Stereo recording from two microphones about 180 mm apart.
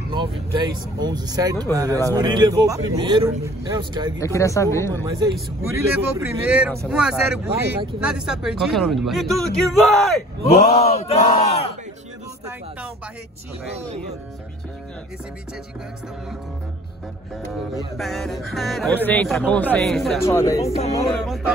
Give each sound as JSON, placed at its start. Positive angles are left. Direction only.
{"t": 0.1, "sound": "speech", "side_deg": -25}
{"t": 4.2, "sound": "speech", "side_deg": 15}
{"t": 5.6, "sound": "speech", "side_deg": -15}
{"t": 10.5, "sound": "battle cry", "side_deg": 35}
{"t": 17.9, "sound": "speech", "side_deg": 0}
{"t": 20.2, "sound": "speech", "side_deg": 15}
{"t": 20.6, "sound": "battle cry", "side_deg": 35}